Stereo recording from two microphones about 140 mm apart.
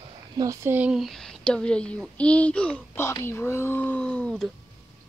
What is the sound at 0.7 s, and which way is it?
A child's voice, 10° right (ahead or behind).